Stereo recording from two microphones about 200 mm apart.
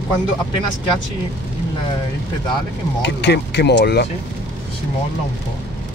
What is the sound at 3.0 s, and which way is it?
Speech, 60° left (ahead or behind).